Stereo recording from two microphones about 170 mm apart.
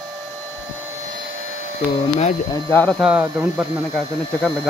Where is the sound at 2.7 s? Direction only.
10° left (ahead or behind).